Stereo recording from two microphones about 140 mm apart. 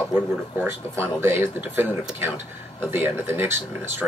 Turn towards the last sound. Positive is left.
turn(degrees=-15)  # may be behind; listen again after turning